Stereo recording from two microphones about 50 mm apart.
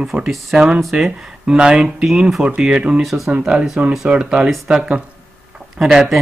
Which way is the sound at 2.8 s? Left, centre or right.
Right.